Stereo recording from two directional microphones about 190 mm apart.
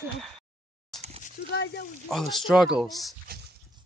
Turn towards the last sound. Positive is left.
turn(degrees=0)  # may be behind; listen again after turning